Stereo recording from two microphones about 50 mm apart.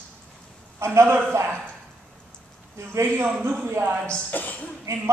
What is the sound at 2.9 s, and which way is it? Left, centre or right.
Speech, right.